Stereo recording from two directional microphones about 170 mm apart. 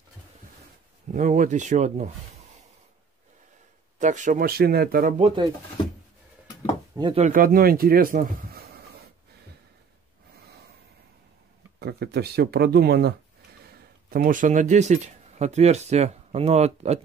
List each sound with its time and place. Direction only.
1.1 s speech: 45° right (ahead or behind)
4.0 s speech: 45° right (ahead or behind); by 5.1 s 60° right (ahead or behind)
5.2 s speech: 25° right (ahead or behind)
7.0 s speech: 30° right (ahead or behind)
7.2 s speech: 55° right (ahead or behind)
11.8 s speech: 70° right (ahead or behind)
14.1 s speech: 55° right (ahead or behind)